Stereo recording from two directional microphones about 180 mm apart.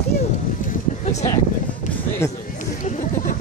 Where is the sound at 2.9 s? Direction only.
40° left (ahead or behind).